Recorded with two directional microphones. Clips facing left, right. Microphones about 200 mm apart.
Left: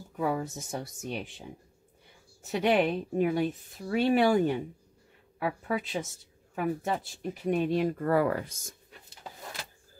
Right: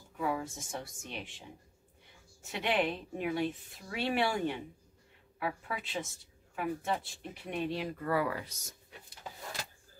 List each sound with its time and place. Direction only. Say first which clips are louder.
0.2 s a woman's voice: left 4 dB; 40° left (ahead or behind)
2.4 s a woman's voice: left 7 dB; 40° left (ahead or behind)